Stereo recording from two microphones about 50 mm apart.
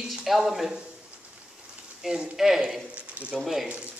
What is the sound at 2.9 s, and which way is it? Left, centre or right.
Speech, right.